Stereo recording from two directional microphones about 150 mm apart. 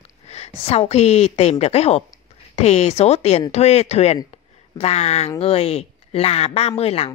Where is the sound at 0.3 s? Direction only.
45° left (ahead or behind).